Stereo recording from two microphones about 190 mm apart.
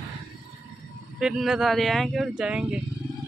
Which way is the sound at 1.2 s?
5° right (ahead or behind).